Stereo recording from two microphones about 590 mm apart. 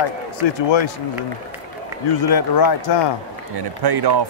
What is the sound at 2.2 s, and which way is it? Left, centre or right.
Speech, left.